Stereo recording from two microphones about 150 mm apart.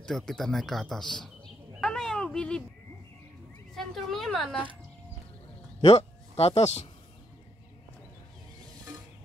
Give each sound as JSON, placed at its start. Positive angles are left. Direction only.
{"t": 0.0, "sound": "speech", "side_deg": 5}
{"t": 1.7, "sound": "a sound", "side_deg": 0}
{"t": 3.7, "sound": "speech", "side_deg": 0}
{"t": 5.8, "sound": "speech", "side_deg": 40}